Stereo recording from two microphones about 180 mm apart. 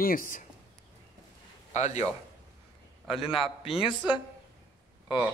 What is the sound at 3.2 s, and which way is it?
Speech, 30° left (ahead or behind).